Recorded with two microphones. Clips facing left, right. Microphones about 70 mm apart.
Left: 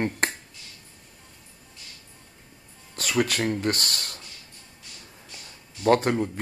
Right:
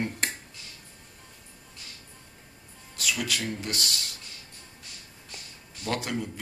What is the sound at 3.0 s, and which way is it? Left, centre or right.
Speech, left.